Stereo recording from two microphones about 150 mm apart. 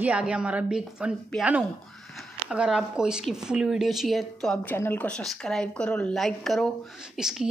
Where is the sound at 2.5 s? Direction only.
5° right (ahead or behind).